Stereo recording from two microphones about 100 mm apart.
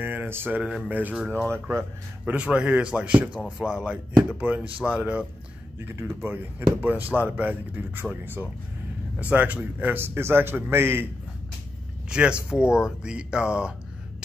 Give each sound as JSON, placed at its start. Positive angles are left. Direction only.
{"t": 0.0, "sound": "a sound", "side_deg": -20}
{"t": 0.6, "sound": "speech", "side_deg": -10}
{"t": 1.3, "sound": "speech", "side_deg": 10}
{"t": 1.7, "sound": "a man's voice", "side_deg": -25}
{"t": 2.3, "sound": "a man's voice", "side_deg": -10}
{"t": 12.1, "sound": "speech", "side_deg": -10}